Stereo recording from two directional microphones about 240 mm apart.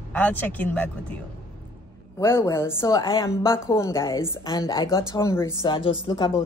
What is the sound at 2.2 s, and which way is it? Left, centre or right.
A woman's voice, centre.